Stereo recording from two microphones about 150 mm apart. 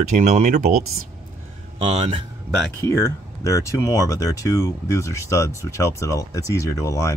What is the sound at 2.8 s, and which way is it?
Speech, 20° left (ahead or behind).